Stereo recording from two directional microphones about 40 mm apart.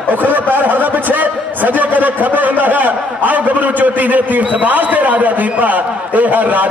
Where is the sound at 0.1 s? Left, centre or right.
Right.